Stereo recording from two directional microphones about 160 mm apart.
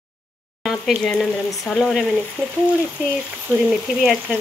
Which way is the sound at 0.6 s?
Centre (ahead or behind).